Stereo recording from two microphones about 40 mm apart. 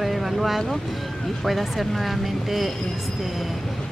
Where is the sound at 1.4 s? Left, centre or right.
Centre.